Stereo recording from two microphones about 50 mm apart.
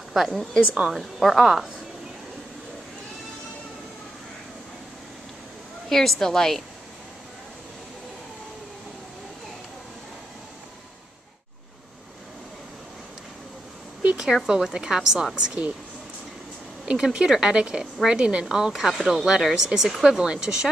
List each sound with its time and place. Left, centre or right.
0.1 s a woman's voice: centre
1.4 s speech: centre
5.9 s a woman's voice: centre
14.1 s speech: centre
16.8 s speech: centre
18.8 s a woman's voice: centre
19.0 s speech: centre